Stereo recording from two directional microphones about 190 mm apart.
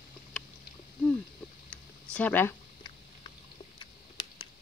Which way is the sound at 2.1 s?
10° left (ahead or behind).